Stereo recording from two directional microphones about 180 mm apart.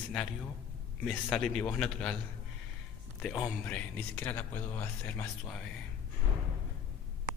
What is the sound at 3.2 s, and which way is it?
A man's voice, 5° left (ahead or behind).